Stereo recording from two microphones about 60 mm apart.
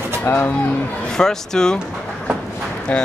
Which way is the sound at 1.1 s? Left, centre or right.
Centre.